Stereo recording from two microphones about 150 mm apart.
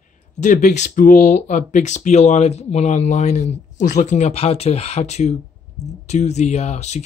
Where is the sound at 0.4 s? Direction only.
55° left (ahead or behind).